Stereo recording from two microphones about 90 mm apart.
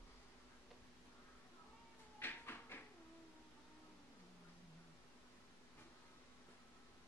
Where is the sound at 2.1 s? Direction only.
25° left (ahead or behind).